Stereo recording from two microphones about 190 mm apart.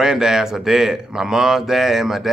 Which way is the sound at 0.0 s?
5° right (ahead or behind).